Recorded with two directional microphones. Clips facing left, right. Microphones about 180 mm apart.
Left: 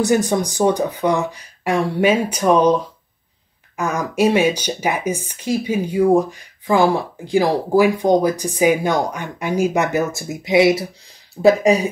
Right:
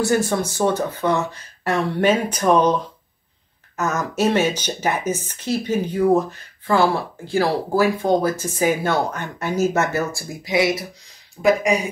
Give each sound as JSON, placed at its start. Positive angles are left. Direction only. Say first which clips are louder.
{"t": 0.0, "sound": "speech", "louder": "left 3 dB", "side_deg": 15}